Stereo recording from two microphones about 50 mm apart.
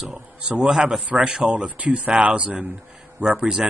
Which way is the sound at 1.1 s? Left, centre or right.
Right.